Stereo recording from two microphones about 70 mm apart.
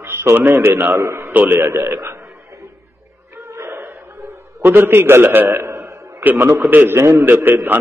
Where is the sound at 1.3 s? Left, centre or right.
Right.